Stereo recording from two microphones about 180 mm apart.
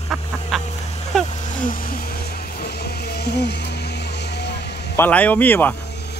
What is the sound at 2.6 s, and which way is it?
Vehicle, 60° left (ahead or behind).